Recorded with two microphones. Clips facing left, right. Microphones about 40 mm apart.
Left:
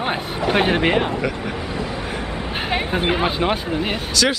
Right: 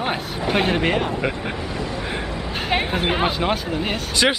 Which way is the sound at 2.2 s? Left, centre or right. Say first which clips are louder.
Left 1 dB; left.